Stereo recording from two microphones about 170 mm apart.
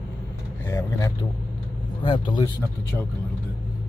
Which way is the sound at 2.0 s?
30° left (ahead or behind).